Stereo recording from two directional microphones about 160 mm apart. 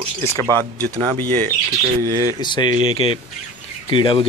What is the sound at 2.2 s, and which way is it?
Speech, 30° left (ahead or behind).